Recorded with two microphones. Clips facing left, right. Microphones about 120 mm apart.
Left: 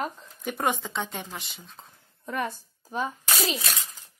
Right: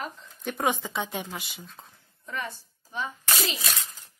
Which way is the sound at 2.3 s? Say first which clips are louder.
Left 5 dB; 45° left (ahead or behind).